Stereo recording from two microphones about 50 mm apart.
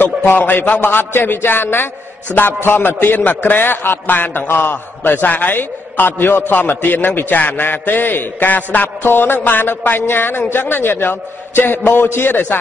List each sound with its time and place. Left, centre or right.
0.0 s a man's voice: left